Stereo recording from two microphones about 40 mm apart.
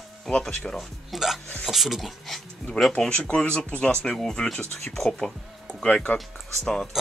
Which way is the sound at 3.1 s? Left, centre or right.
Left.